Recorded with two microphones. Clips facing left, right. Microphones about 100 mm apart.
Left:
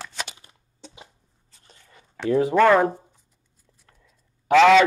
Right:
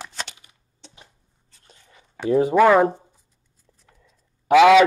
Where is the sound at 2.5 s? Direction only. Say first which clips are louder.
Right 2 dB; 10° right (ahead or behind).